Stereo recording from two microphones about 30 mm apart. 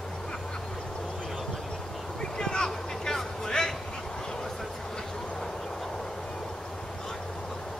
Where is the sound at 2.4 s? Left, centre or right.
Left.